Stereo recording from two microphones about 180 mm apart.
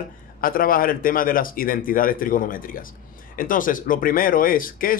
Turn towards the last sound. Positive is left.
turn(degrees=50)  # may be behind; listen again after turning